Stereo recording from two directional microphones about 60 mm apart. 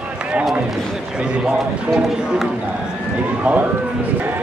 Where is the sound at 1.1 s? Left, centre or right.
Centre.